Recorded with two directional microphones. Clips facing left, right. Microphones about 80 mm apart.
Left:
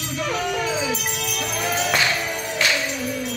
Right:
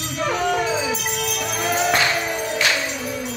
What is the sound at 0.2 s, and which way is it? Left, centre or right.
Music, right.